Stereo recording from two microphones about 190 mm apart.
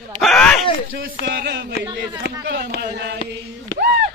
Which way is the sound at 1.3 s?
60° right (ahead or behind).